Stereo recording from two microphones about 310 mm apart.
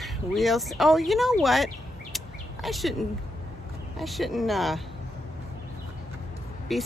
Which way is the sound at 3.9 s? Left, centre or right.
Centre.